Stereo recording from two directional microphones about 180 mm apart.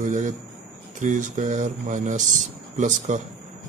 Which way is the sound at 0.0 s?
45° right (ahead or behind).